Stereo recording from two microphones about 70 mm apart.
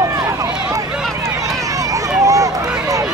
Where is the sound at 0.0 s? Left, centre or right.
Right.